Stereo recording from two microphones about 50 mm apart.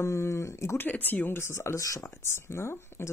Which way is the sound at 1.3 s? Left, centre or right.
Left.